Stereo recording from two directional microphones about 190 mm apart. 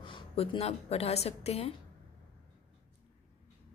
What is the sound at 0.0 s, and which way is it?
A woman's voice, 25° left (ahead or behind).